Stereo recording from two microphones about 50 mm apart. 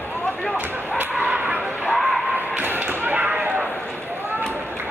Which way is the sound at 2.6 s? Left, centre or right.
Right.